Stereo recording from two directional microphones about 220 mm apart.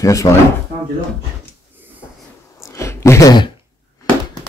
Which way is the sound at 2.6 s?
15° left (ahead or behind).